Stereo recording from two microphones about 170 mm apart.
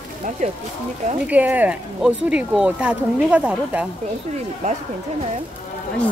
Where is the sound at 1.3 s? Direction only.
10° right (ahead or behind).